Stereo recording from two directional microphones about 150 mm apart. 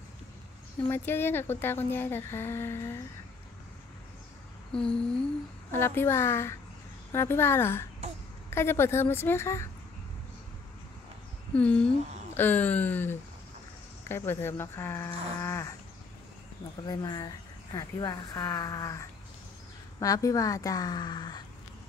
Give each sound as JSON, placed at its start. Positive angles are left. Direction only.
{"t": 0.8, "sound": "speech", "side_deg": 15}
{"t": 4.7, "sound": "a sound", "side_deg": 5}
{"t": 5.7, "sound": "speech", "side_deg": 15}
{"t": 11.5, "sound": "speech", "side_deg": 10}
{"t": 16.8, "sound": "speech", "side_deg": 25}